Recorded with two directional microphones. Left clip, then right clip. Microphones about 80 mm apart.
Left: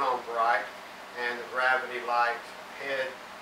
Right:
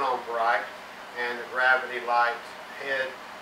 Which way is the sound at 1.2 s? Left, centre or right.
Centre.